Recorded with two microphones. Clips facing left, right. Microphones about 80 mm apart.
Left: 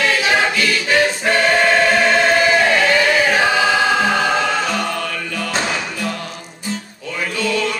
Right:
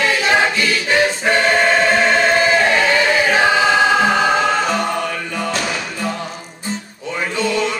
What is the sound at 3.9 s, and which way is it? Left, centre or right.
Music, centre.